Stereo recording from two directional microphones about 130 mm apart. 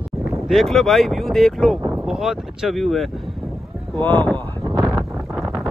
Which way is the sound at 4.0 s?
15° left (ahead or behind).